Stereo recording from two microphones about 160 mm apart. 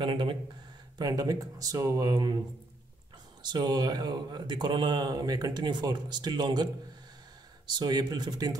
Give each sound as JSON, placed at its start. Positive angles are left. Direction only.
{"t": 0.0, "sound": "speech", "side_deg": -30}
{"t": 3.4, "sound": "speech", "side_deg": -25}